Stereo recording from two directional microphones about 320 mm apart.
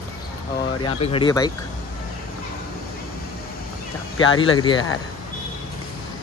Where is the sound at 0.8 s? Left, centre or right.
Centre.